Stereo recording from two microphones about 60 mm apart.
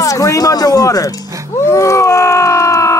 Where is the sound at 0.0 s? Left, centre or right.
Left.